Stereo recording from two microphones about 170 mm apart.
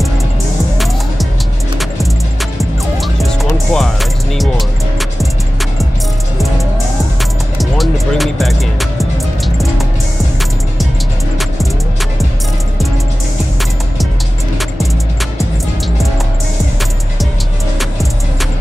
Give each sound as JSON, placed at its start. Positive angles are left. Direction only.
{"t": 2.6, "sound": "music", "side_deg": 0}
{"t": 7.5, "sound": "music", "side_deg": 0}
{"t": 17.7, "sound": "music", "side_deg": 0}